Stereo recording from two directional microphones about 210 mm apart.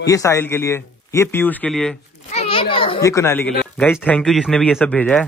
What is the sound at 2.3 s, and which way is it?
A child's voice, 25° left (ahead or behind).